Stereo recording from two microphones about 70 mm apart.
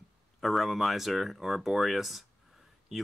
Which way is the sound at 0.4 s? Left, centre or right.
Centre.